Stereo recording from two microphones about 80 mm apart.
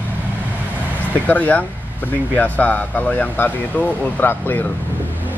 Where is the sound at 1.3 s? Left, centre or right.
Centre.